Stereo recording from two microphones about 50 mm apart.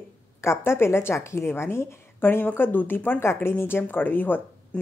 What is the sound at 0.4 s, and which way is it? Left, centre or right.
A woman's voice, left.